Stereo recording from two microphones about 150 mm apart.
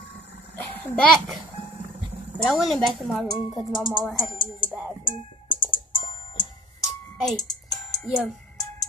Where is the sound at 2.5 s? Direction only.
Centre (ahead or behind).